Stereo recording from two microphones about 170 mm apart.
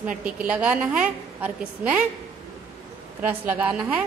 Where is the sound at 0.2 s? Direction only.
5° right (ahead or behind).